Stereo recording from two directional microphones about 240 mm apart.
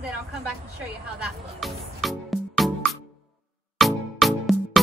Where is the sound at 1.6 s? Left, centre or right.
Centre.